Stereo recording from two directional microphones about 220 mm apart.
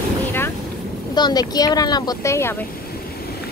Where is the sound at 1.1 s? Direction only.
20° left (ahead or behind).